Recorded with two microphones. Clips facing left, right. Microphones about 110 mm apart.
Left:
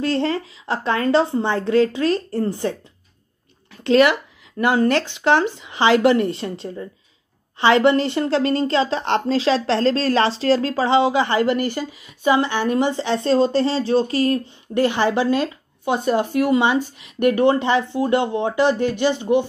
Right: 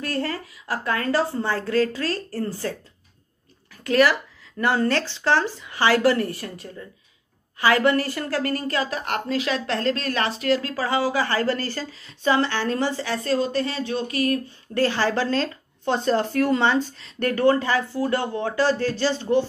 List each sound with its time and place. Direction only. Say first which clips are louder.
0.0 s a woman's voice: left 7 dB; 25° left (ahead or behind)
3.7 s a woman's voice: left 4 dB; 25° left (ahead or behind)